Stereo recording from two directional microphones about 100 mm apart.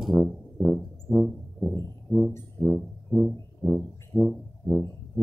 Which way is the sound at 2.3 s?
20° left (ahead or behind).